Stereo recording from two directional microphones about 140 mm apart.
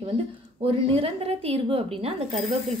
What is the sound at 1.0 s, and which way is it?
Speech, 45° right (ahead or behind).